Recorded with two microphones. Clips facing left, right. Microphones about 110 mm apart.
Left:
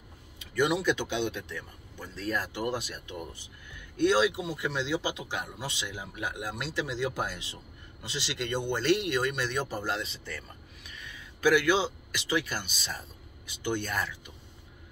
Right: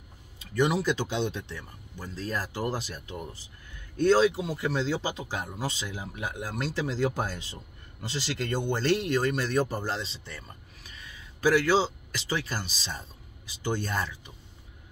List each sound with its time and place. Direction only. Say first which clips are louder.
0.6 s a man's voice: right 1 dB; 35° right (ahead or behind)